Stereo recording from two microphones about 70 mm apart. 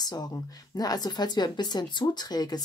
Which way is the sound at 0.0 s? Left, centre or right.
Left.